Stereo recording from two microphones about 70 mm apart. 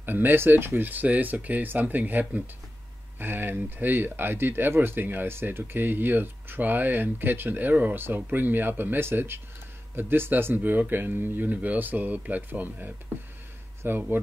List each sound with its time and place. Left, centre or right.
0.0 s speech: right